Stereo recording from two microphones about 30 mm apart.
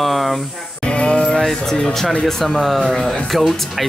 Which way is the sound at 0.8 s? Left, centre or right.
Left.